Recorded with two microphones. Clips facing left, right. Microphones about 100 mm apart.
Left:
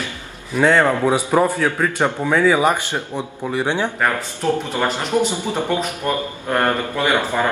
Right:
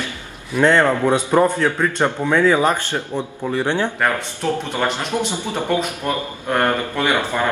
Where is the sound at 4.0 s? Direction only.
Centre (ahead or behind).